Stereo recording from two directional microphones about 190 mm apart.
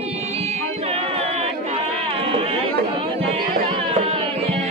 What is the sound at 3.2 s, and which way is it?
Music, 30° right (ahead or behind).